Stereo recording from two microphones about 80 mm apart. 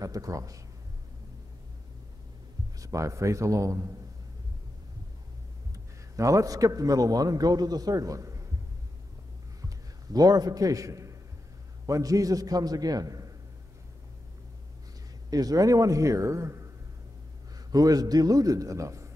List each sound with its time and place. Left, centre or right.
0.0 s a man's voice: right
2.8 s a man's voice: right
6.1 s a man's voice: right
10.1 s a man's voice: right
15.2 s a man's voice: right
17.6 s a man's voice: right